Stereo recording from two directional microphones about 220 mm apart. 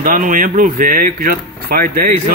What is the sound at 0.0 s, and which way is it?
Speech, 35° right (ahead or behind).